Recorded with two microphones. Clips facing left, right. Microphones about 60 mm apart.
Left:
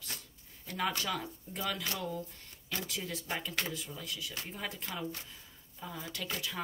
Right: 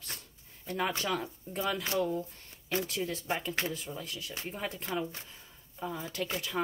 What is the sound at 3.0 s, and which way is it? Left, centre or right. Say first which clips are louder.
Speech: right 5 dB; right.